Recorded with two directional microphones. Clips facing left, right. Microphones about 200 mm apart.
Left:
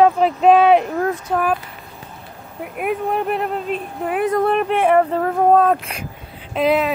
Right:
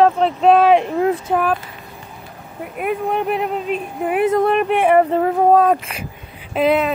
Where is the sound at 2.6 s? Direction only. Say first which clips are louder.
Even; centre (ahead or behind).